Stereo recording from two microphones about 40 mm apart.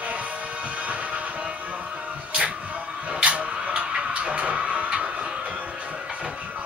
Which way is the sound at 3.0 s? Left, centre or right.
Right.